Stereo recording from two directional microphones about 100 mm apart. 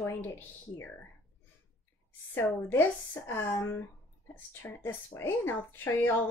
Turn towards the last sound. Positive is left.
turn(degrees=20)  # may be behind; listen again after turning